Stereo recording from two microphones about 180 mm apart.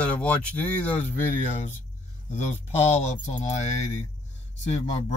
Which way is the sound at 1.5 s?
40° left (ahead or behind).